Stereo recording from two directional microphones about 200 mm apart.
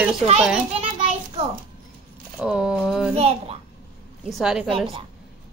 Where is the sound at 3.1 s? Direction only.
30° right (ahead or behind).